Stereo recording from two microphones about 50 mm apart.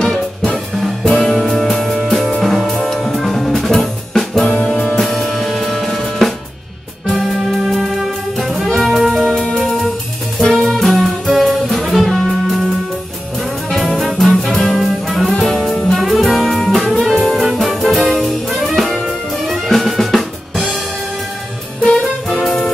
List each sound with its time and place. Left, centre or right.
1.1 s music: centre
2.6 s drum kit: centre
4.7 s music: centre
7.1 s brass instrument: centre
8.7 s music: centre
9.3 s music: centre
14.1 s music: centre
14.9 s brass instrument: centre
15.4 s jazz: centre
16.0 s music: centre
17.4 s brass instrument: centre
19.0 s music: centre
21.8 s music: centre
22.4 s music: centre